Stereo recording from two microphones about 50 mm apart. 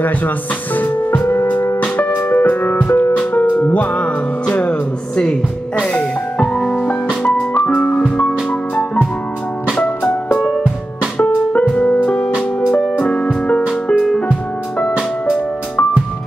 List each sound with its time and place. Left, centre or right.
0.7 s music: left
1.2 s music: left
1.8 s music: left
3.1 s music: left
6.4 s music: centre
11.1 s music: left
13.8 s music: centre
15.2 s music: left